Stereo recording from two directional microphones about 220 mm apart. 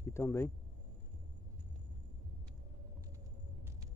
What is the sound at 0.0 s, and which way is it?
Speech, 10° left (ahead or behind).